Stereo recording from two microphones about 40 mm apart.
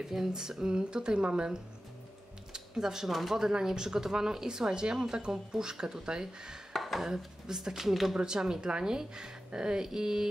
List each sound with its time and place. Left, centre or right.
0.0 s speech: centre
2.5 s a sound: centre
3.1 s speech: centre
3.4 s a woman's voice: centre
6.7 s speech: centre
7.4 s a woman's voice: centre
8.2 s speech: centre